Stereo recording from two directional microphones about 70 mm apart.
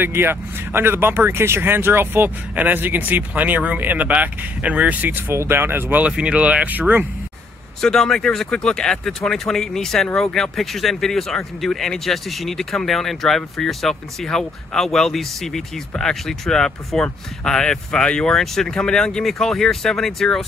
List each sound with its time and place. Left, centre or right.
0.0 s speech: right
5.3 s speech: right
6.0 s speech: centre
7.8 s speech: centre